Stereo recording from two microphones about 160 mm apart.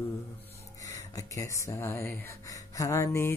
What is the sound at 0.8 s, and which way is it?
Speech, 20° left (ahead or behind).